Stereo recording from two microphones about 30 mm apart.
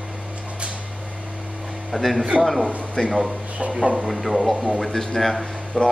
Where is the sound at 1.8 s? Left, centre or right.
Centre.